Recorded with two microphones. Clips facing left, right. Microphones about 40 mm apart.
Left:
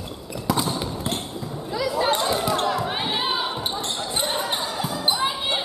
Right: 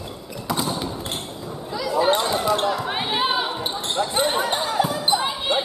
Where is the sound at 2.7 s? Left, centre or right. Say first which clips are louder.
Right 1 dB; centre.